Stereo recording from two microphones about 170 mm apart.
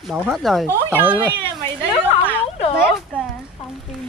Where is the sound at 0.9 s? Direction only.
10° right (ahead or behind).